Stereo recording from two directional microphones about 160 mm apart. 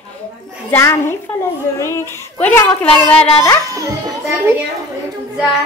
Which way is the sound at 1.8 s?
15° left (ahead or behind).